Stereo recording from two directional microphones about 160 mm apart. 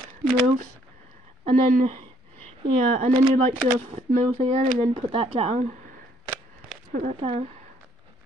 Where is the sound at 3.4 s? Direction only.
45° right (ahead or behind).